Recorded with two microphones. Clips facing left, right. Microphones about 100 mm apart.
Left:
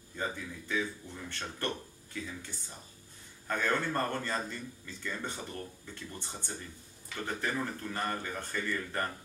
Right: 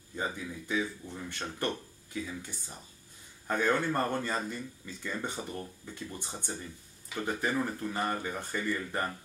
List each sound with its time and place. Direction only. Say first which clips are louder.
0.1 s a man's voice: right 2 dB; 15° right (ahead or behind)
3.4 s a man's voice: right 3 dB; 15° right (ahead or behind)